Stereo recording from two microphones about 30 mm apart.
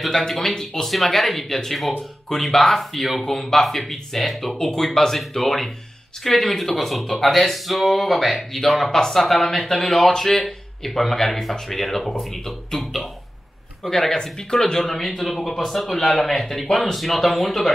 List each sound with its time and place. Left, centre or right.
0.3 s speech: centre
0.8 s speech: centre
3.3 s speech: centre
15.0 s speech: centre
16.6 s speech: left
16.9 s speech: centre